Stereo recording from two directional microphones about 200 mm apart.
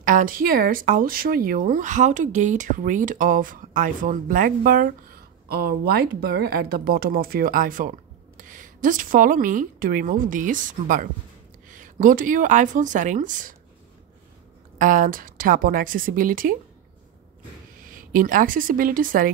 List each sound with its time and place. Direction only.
0.0 s a woman's voice: 40° right (ahead or behind)
14.8 s speech: 40° right (ahead or behind)
17.8 s a woman's voice: 45° right (ahead or behind)